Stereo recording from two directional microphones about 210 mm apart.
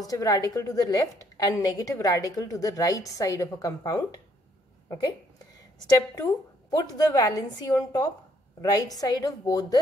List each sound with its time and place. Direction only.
0.0 s a woman's voice: 15° left (ahead or behind)